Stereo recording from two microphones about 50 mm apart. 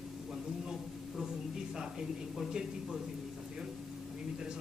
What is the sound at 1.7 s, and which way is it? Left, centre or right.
A man's voice, centre.